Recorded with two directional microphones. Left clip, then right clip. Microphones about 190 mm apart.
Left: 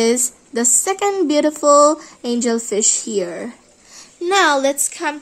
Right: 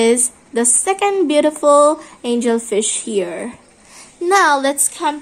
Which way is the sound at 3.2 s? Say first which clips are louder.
Right 2 dB; 45° left (ahead or behind).